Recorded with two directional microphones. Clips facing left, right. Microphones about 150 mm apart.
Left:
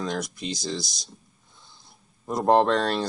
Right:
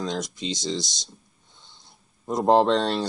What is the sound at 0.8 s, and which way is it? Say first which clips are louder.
Speech: right 3 dB; centre (ahead or behind).